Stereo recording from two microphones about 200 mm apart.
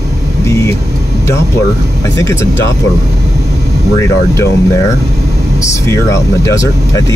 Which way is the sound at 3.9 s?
15° left (ahead or behind).